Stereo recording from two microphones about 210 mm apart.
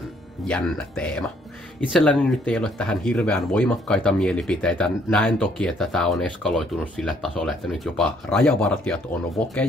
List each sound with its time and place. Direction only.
0.5 s speech: 5° left (ahead or behind)